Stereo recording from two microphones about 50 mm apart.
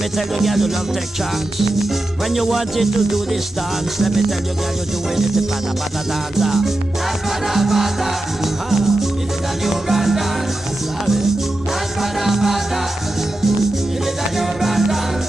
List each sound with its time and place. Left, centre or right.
0.4 s music: centre
2.3 s music: centre
6.3 s music: centre
12.0 s music: centre
14.4 s music: centre